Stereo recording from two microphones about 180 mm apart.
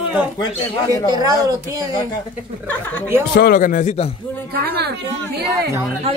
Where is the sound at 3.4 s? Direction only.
50° left (ahead or behind); by 4.1 s 35° left (ahead or behind).